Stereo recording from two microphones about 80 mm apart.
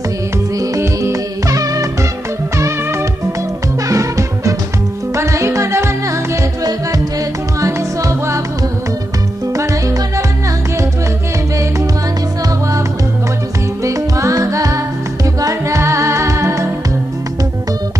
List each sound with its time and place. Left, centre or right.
0.6 s music: right
2.5 s music: right
7.6 s music: right
9.5 s music: right
13.8 s music: right